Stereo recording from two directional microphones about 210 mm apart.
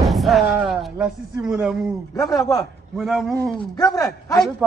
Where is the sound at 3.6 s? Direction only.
20° left (ahead or behind).